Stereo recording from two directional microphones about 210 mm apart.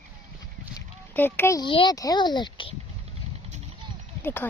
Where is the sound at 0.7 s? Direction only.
10° left (ahead or behind).